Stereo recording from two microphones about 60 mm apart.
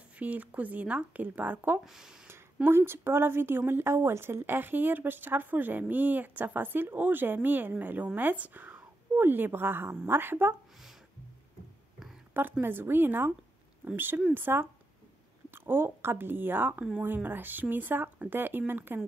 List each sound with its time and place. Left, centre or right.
0.2 s speech: right
1.9 s speech: centre
2.2 s speech: right
12.4 s speech: right